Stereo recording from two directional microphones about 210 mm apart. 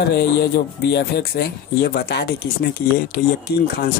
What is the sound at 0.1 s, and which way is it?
Speech, 55° left (ahead or behind).